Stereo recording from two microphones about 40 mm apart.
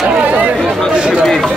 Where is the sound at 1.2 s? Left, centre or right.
Centre.